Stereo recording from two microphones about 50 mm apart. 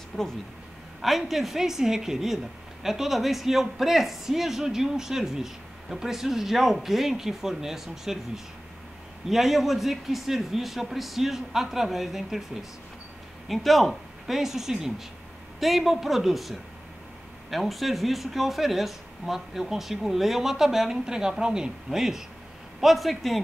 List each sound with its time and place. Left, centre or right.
1.0 s a woman's voice: centre
9.3 s speech: centre
13.5 s speech: centre